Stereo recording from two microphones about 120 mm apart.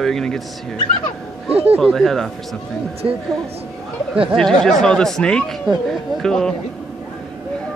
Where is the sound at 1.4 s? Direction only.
55° right (ahead or behind).